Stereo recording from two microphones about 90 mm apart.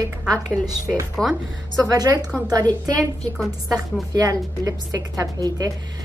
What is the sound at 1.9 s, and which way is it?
A woman's voice, 45° right (ahead or behind).